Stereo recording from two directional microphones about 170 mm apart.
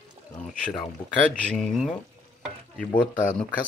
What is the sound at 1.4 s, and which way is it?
Speech, 5° left (ahead or behind).